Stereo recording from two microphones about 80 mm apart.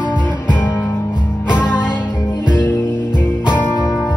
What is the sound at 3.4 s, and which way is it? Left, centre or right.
Music, centre.